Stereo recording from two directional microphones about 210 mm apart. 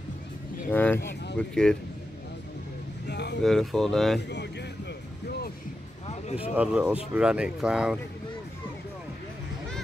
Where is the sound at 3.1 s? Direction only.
55° left (ahead or behind).